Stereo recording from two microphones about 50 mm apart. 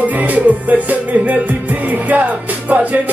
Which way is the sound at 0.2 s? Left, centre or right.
Right.